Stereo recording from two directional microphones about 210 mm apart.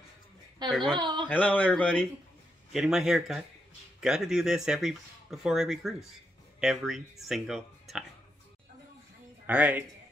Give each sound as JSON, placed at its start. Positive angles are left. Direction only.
{"t": 0.8, "sound": "speech", "side_deg": -20}
{"t": 1.3, "sound": "a man's voice", "side_deg": 5}
{"t": 9.5, "sound": "speech", "side_deg": -5}